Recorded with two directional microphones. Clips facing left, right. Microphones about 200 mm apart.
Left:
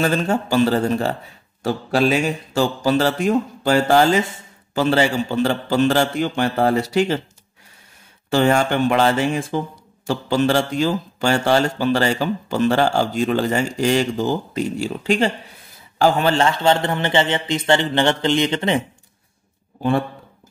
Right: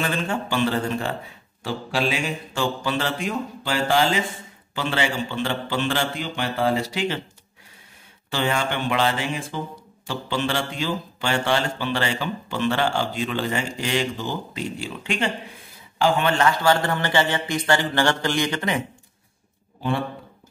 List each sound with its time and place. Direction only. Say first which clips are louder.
0.0 s speech: left 6 dB; 40° left (ahead or behind)
1.6 s mantra: left 7 dB; 45° left (ahead or behind)
4.7 s speech: left 7 dB; 40° left (ahead or behind)
8.3 s mantra: left 8 dB; 45° left (ahead or behind)
10.0 s a man's voice: left 8 dB; 40° left (ahead or behind); by 18.8 s 25° left (ahead or behind)